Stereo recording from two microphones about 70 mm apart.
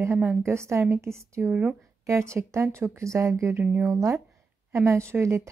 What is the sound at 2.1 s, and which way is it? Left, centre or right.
Speech, right.